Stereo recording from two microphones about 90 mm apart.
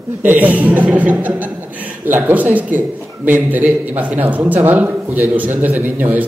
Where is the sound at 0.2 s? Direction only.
20° right (ahead or behind).